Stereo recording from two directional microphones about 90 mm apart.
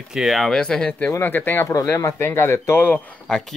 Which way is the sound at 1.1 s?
25° left (ahead or behind).